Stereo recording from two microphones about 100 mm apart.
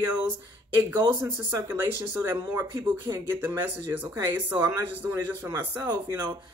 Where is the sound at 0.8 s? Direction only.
50° right (ahead or behind).